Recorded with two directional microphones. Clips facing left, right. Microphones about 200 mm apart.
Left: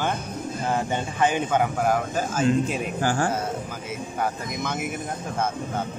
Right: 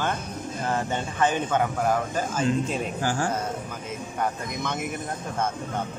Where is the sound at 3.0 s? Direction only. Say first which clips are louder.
Left 5 dB; 55° left (ahead or behind).